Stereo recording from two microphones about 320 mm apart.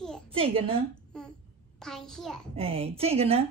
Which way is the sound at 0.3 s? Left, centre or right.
Centre.